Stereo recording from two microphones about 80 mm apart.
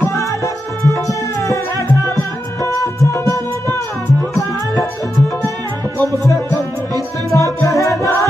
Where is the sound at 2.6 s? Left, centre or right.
Left.